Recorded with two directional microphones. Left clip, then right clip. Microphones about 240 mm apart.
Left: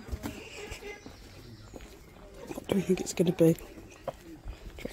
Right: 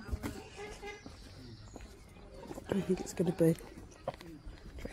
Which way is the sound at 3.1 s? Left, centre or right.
Left.